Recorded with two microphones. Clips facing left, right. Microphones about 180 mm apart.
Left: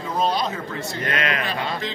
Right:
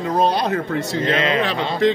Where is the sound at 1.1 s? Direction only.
25° right (ahead or behind).